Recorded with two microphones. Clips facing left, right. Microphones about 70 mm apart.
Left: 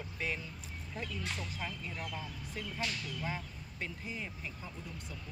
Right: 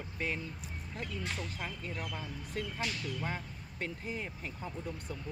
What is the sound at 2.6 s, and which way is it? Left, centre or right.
Speech, right.